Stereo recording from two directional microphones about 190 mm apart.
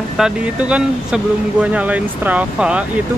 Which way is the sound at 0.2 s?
5° right (ahead or behind).